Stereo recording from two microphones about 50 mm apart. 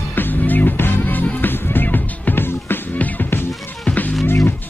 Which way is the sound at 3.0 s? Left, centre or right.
Left.